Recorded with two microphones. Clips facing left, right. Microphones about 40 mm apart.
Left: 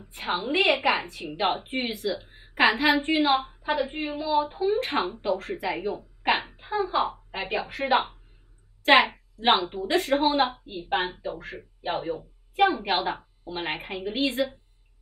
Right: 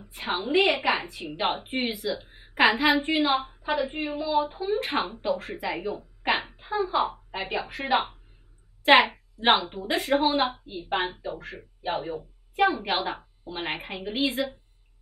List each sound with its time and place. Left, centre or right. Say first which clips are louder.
0.0 s a woman's voice: left 1 dB; centre